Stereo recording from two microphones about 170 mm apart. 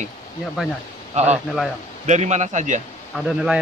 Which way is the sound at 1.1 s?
40° right (ahead or behind).